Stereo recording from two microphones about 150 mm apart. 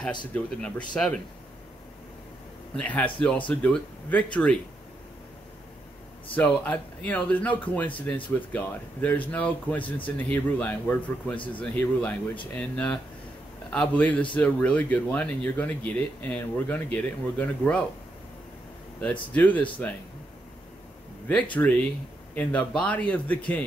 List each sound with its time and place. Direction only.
0.3 s speech: 5° left (ahead or behind)
2.7 s speech: 10° left (ahead or behind)
6.3 s speech: 10° left (ahead or behind)
18.9 s speech: 10° left (ahead or behind)
21.6 s speech: 20° left (ahead or behind)